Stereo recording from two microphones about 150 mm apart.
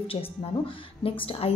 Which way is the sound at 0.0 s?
40° left (ahead or behind).